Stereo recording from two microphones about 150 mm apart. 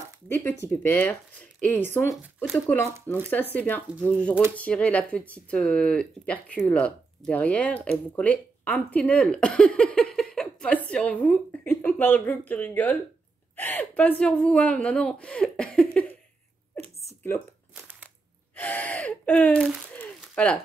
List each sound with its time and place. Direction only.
0.3 s speech: 15° left (ahead or behind)
18.6 s gasp: 10° left (ahead or behind)
19.7 s crumpling: 5° left (ahead or behind)